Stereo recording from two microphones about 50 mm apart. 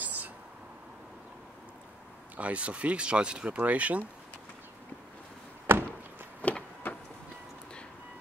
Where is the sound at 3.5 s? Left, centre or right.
Right.